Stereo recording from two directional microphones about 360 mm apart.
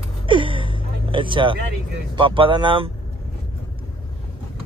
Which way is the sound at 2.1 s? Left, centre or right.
Centre.